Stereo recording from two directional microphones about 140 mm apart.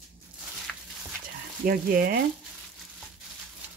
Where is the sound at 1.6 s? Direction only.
90° right.